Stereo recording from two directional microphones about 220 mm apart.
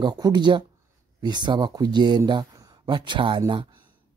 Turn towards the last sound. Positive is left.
turn(degrees=-20)  # may be behind; listen again after turning